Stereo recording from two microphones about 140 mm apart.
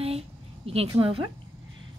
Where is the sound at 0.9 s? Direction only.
40° right (ahead or behind).